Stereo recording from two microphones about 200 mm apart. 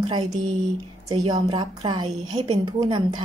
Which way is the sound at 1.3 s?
20° right (ahead or behind).